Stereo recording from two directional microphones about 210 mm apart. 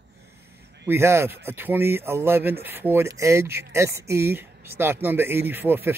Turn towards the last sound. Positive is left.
turn(degrees=-10)  # may be behind; listen again after turning